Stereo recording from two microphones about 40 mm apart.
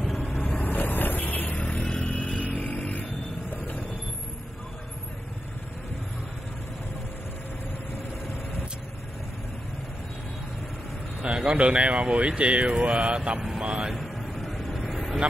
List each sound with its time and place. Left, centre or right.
0.4 s vehicle: left
0.7 s vehicle: left
1.8 s vehicle: left
11.2 s speech: right
13.6 s vehicle: right
13.9 s vehicle: centre